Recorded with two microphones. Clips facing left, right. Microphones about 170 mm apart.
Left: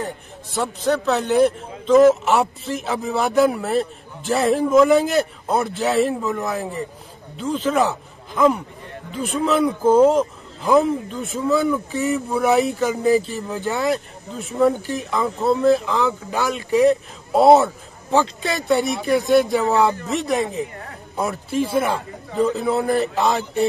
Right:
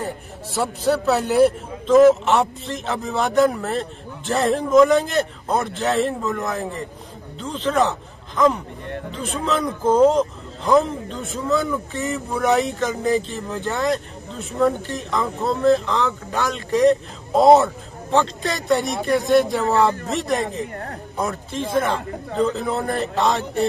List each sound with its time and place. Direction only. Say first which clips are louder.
0.6 s a man's voice: even; 5° right (ahead or behind)
20.7 s speech: right 5 dB; 50° right (ahead or behind)
21.2 s a man's voice: left 3 dB; 5° left (ahead or behind)